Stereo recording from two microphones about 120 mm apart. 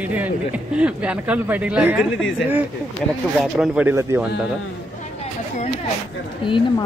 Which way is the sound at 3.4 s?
5° right (ahead or behind).